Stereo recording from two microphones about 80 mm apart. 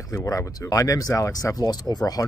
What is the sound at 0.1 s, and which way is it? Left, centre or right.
Speech, left.